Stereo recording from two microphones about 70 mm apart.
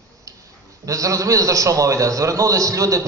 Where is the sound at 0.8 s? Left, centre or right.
Right.